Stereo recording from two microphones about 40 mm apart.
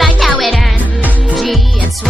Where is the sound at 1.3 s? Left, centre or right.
Centre.